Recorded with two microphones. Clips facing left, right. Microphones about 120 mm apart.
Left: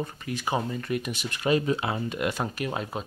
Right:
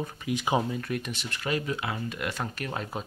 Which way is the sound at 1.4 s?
25° left (ahead or behind).